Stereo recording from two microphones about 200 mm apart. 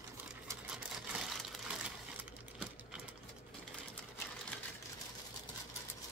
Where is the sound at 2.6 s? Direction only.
5° right (ahead or behind).